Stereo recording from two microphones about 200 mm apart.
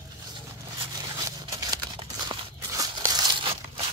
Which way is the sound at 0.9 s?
15° right (ahead or behind).